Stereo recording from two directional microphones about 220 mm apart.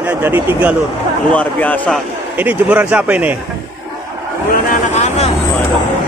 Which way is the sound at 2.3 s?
10° right (ahead or behind).